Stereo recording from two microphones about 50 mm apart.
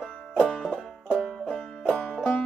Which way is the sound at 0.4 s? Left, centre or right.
Centre.